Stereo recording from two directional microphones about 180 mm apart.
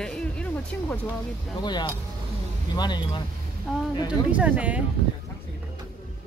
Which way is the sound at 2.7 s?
25° left (ahead or behind).